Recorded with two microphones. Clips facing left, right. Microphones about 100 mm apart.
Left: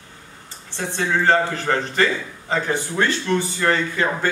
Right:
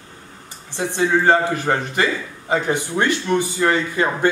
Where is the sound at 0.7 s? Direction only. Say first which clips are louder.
Right 4 dB; 15° right (ahead or behind).